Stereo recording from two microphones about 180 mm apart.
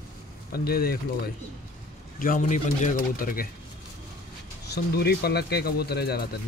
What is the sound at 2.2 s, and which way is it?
Speech, 45° left (ahead or behind).